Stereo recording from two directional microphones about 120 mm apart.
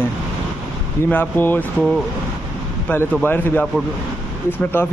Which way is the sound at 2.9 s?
15° left (ahead or behind).